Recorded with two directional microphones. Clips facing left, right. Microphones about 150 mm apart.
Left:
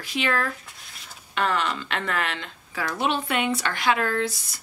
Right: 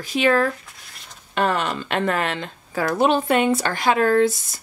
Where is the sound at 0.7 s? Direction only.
Centre (ahead or behind).